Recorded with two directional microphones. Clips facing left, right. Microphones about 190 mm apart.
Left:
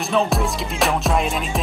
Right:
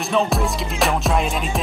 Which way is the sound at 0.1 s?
Centre (ahead or behind).